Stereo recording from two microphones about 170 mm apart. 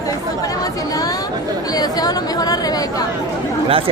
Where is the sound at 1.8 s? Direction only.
25° left (ahead or behind).